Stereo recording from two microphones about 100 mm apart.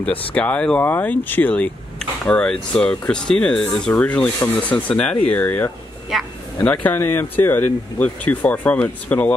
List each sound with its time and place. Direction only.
0.0 s speech: 10° left (ahead or behind)